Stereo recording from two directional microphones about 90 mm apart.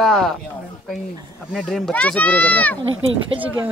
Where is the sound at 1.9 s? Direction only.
15° left (ahead or behind).